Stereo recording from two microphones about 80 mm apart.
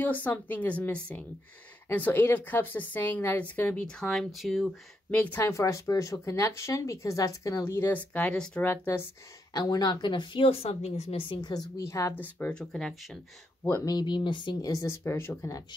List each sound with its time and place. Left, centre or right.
0.0 s a woman's voice: left
3.8 s speech: centre
5.1 s a woman's voice: left
5.5 s speech: left
7.7 s a woman's voice: left
9.5 s speech: left
11.2 s speech: left
11.8 s speech: left
12.2 s a woman's voice: left
12.5 s speech: centre
13.8 s speech: left
14.7 s speech: left